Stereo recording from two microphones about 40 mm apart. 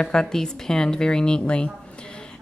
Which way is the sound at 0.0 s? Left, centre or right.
Centre.